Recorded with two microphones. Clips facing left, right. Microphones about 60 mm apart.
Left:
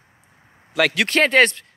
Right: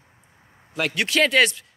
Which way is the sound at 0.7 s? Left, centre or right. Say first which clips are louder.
Left 6 dB; left.